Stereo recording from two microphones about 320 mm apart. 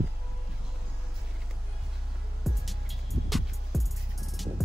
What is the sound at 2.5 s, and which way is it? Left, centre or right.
Music, centre.